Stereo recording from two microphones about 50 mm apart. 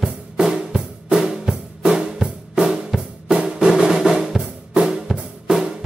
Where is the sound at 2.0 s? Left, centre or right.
Centre.